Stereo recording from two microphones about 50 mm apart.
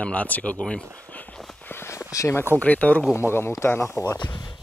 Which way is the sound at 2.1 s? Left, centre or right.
Left.